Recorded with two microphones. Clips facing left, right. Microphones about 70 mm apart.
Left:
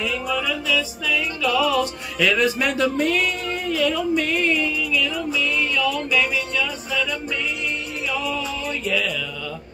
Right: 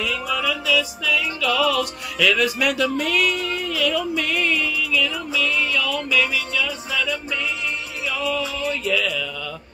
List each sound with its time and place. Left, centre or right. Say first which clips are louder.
0.0 s music: even; left
8.8 s music: even; centre